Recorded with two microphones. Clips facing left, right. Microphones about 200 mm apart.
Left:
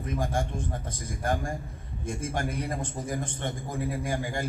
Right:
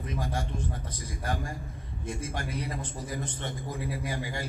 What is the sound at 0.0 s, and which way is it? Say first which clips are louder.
A man's voice: left 4 dB; 50° left (ahead or behind).